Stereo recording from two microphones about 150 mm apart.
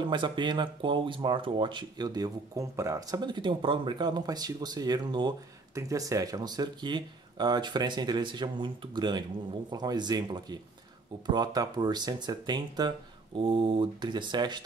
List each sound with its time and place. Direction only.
0.1 s speech: 30° right (ahead or behind)